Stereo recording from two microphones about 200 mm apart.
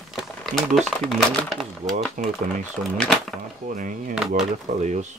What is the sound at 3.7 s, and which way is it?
Speech, 40° right (ahead or behind).